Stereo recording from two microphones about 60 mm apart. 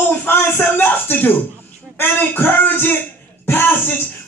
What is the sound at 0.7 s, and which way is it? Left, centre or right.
Music, left.